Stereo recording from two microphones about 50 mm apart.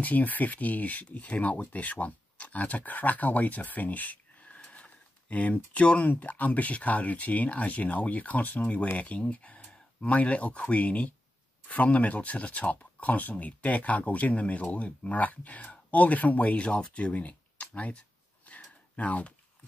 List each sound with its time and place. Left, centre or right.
0.0 s speech: left
4.6 s speech: left
18.5 s a sound: left
18.9 s speech: left